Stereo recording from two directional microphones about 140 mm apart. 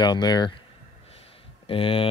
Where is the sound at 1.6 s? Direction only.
40° left (ahead or behind).